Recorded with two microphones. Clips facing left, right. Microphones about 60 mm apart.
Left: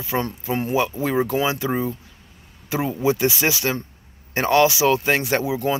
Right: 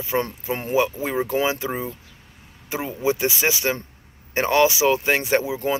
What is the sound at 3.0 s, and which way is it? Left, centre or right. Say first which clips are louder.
Speech: left 1 dB; right.